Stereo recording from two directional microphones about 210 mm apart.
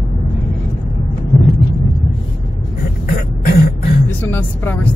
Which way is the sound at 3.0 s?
45° left (ahead or behind).